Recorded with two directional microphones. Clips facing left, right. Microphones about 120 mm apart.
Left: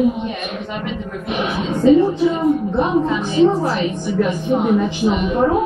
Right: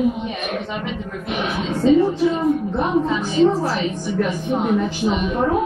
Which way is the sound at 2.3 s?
15° left (ahead or behind).